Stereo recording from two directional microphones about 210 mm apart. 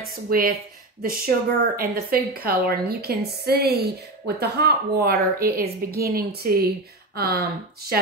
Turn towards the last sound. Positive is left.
turn(degrees=-50)  # may be behind; listen again after turning